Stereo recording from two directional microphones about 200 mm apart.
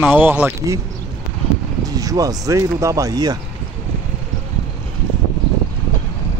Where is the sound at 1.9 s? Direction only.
20° right (ahead or behind).